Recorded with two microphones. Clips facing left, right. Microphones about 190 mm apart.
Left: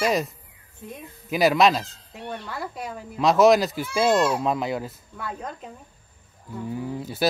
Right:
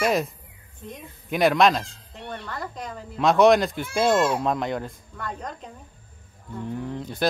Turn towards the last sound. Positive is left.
turn(degrees=5)  # may be behind; listen again after turning